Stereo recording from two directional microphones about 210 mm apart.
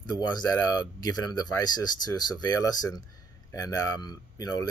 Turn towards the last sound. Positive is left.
turn(degrees=20)  # may be behind; listen again after turning